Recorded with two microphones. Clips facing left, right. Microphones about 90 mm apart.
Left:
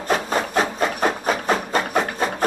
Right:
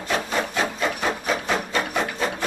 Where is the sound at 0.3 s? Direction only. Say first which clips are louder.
Left 3 dB; 40° left (ahead or behind).